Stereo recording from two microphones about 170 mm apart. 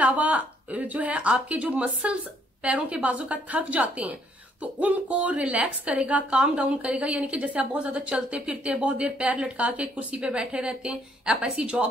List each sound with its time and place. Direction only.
0.0 s a woman's voice: 10° right (ahead or behind)